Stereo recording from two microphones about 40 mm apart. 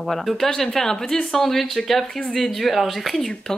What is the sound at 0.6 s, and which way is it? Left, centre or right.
Speech, centre.